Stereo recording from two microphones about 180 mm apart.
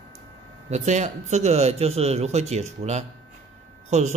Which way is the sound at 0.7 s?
40° right (ahead or behind).